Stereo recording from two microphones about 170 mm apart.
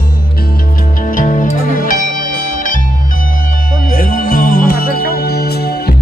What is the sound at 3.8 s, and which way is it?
Music, 55° left (ahead or behind).